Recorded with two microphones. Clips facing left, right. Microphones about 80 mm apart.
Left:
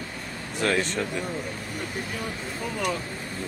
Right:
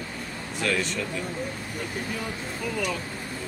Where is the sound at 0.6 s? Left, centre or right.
Left.